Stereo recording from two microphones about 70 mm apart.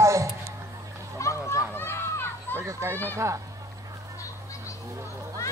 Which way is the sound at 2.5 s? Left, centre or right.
Right.